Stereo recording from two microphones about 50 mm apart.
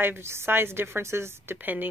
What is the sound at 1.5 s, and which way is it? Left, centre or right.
Speech, right.